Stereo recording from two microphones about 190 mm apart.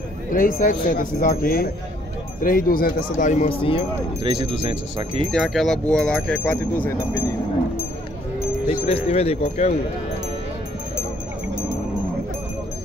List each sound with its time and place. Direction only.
0.3 s speech: 45° left (ahead or behind); by 3.8 s 30° left (ahead or behind)
4.2 s speech: 30° right (ahead or behind)
5.3 s speech: centre (ahead or behind)
8.8 s speech: 30° left (ahead or behind)